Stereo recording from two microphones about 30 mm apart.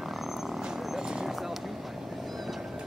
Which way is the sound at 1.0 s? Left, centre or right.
Right.